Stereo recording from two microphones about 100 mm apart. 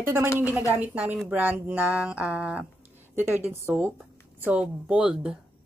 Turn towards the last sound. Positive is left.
turn(degrees=-10)  # may be behind; listen again after turning